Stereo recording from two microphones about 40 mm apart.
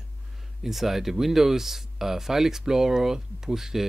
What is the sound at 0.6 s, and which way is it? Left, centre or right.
Speech, centre.